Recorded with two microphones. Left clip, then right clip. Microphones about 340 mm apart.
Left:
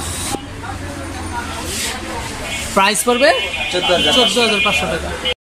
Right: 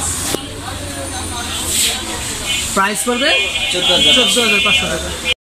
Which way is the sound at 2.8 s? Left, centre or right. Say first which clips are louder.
Left 3 dB; centre.